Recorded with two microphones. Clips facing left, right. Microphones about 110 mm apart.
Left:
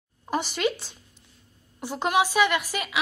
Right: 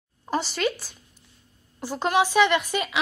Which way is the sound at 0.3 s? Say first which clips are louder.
Even; 15° left (ahead or behind).